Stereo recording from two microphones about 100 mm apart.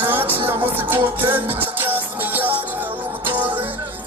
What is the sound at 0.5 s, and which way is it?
A man's voice, 20° right (ahead or behind).